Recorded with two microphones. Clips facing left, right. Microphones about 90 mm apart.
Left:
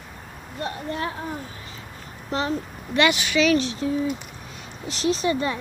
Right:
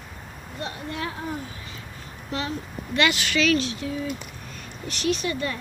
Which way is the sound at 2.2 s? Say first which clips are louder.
Left 4 dB; 35° left (ahead or behind).